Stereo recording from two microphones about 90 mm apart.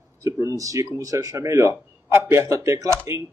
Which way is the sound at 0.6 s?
40° right (ahead or behind).